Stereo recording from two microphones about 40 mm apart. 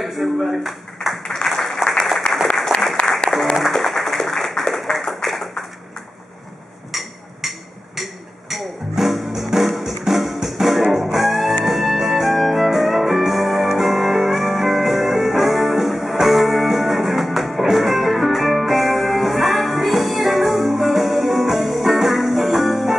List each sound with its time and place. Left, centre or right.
0.0 s speech: centre
1.2 s applause: centre
2.3 s applause: left
3.7 s music: centre
4.2 s a sound: centre
4.5 s clapping: centre
6.9 s a sound: centre
11.6 s music: centre